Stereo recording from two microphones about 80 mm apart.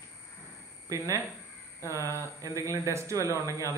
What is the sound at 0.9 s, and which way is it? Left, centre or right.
Speech, right.